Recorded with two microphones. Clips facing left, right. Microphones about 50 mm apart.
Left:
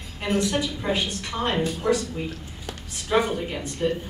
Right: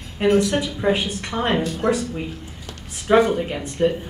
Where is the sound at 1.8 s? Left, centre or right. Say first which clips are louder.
Right 2 dB; right.